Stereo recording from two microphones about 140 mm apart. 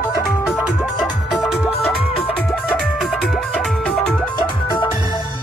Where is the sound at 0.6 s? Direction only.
Centre (ahead or behind).